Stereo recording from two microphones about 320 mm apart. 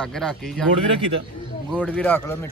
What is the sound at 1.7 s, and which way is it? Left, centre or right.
Speech, centre.